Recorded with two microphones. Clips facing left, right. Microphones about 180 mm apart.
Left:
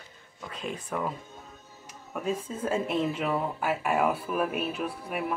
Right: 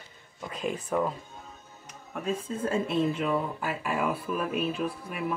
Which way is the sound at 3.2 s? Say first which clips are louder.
Even; 85° left.